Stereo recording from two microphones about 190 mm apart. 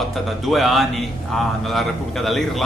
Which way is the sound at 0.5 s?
Centre (ahead or behind).